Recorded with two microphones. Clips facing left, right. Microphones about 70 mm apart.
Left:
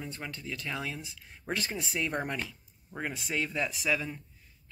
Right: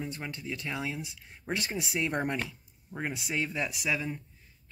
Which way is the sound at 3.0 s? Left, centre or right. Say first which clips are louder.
Right 1 dB; centre.